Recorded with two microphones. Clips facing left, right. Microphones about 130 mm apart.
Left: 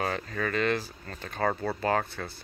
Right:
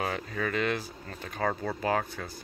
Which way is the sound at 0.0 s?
10° right (ahead or behind).